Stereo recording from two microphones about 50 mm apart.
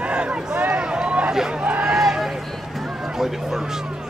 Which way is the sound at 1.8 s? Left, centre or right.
Centre.